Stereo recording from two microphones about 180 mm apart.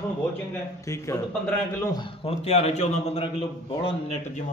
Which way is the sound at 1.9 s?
35° left (ahead or behind).